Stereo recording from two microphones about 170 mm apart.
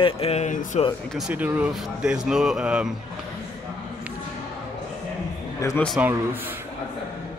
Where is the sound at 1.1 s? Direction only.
5° right (ahead or behind).